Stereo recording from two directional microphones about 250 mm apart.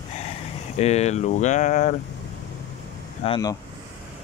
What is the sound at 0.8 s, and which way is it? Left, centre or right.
Speech, left.